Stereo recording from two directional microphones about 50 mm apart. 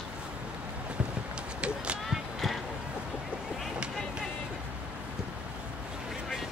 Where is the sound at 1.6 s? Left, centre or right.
Right.